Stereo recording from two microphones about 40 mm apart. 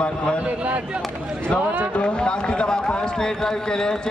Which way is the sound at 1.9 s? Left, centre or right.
Left.